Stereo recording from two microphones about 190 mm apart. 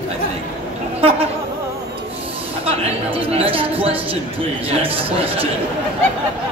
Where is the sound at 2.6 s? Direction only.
30° right (ahead or behind).